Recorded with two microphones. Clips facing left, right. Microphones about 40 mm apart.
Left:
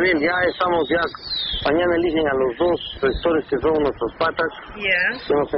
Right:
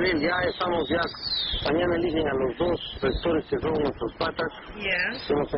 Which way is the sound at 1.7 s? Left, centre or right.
Left.